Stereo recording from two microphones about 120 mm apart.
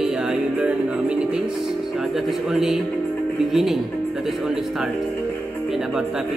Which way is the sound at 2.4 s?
5° right (ahead or behind).